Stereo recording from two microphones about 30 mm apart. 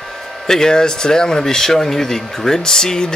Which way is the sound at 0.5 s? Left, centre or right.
Left.